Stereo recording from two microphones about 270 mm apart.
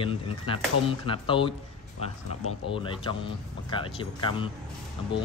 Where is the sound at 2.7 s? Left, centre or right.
Centre.